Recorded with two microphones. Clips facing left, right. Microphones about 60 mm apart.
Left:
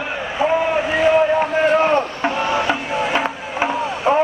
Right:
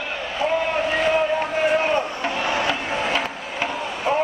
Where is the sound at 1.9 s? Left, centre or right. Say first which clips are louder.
Left 4 dB; centre.